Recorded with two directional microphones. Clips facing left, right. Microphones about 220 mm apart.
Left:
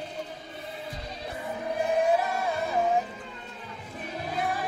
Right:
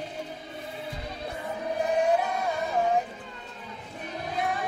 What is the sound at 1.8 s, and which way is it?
Music, centre (ahead or behind).